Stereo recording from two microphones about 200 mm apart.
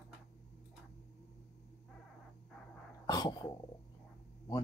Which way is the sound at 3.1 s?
20° left (ahead or behind).